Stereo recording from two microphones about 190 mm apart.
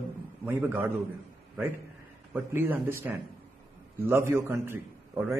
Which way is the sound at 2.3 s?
10° right (ahead or behind).